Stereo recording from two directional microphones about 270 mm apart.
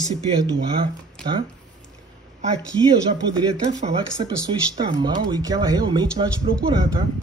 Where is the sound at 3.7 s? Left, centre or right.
Centre.